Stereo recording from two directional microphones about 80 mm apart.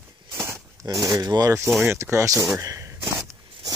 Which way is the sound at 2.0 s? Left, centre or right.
Right.